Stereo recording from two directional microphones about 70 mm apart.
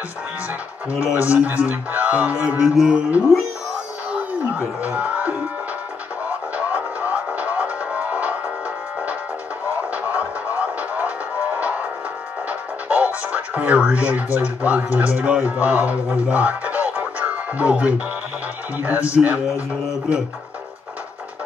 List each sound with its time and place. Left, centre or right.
0.8 s a man's voice: centre
2.7 s a sound: centre
4.1 s speech: centre
6.5 s music: centre
9.7 s music: centre
12.4 s a man's voice: centre